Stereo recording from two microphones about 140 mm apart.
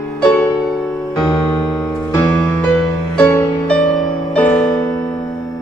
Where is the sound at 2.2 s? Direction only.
20° left (ahead or behind).